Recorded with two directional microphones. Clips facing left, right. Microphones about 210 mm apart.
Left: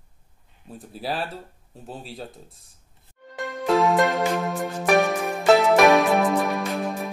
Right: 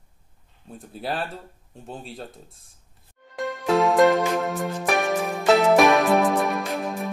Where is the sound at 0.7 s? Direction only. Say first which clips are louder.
Even; centre (ahead or behind).